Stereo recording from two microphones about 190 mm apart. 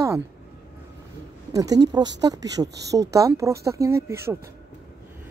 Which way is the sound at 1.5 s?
20° right (ahead or behind).